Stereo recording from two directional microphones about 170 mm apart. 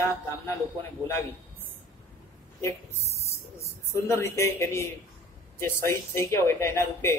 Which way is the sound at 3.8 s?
15° left (ahead or behind).